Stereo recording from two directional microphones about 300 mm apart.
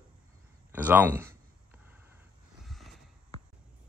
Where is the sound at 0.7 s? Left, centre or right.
Centre.